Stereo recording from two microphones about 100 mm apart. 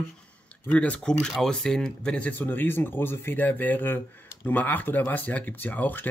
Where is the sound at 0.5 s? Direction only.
15° left (ahead or behind).